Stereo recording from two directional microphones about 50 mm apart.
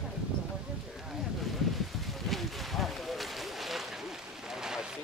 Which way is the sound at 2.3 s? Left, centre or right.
Centre.